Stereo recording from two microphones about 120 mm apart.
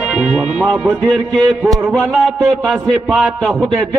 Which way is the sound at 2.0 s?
20° right (ahead or behind).